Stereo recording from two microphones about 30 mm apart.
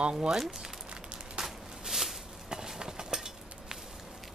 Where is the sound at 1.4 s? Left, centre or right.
Centre.